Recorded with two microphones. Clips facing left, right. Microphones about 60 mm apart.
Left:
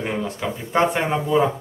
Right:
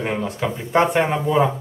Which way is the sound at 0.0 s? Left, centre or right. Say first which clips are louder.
Right 2 dB; centre.